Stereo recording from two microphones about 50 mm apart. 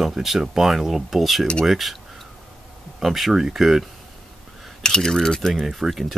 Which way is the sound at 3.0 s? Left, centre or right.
Centre.